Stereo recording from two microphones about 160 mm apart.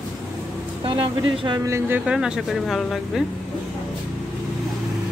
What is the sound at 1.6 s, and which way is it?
Speech, 15° right (ahead or behind).